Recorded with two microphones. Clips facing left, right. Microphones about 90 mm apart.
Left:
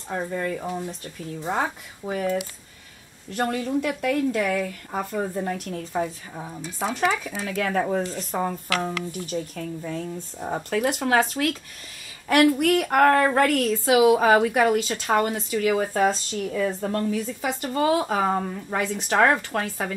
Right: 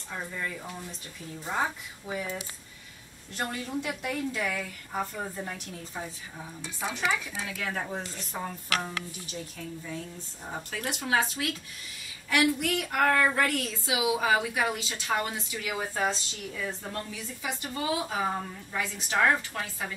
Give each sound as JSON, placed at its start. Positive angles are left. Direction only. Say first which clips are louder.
{"t": 0.1, "sound": "a woman's voice", "louder": "left 9 dB", "side_deg": 50}
{"t": 2.0, "sound": "speech", "louder": "left 6 dB", "side_deg": 40}
{"t": 3.3, "sound": "a woman's voice", "louder": "left 8 dB", "side_deg": 55}